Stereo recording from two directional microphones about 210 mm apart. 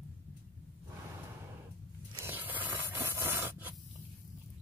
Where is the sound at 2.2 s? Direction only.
10° right (ahead or behind).